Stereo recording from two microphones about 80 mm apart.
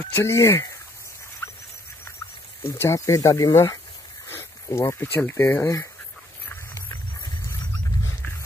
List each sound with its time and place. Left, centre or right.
0.0 s speech: left
1.4 s a sound: left
2.6 s speech: left